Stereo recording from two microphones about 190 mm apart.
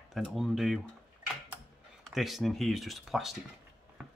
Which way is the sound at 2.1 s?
Centre (ahead or behind).